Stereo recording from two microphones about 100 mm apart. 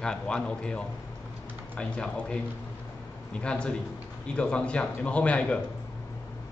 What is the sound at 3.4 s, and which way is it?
Speech, 10° left (ahead or behind).